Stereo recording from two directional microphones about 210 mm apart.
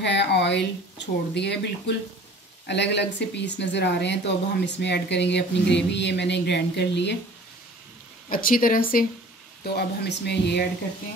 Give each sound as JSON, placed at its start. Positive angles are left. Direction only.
{"t": 0.0, "sound": "speech", "side_deg": 55}
{"t": 8.3, "sound": "speech", "side_deg": 40}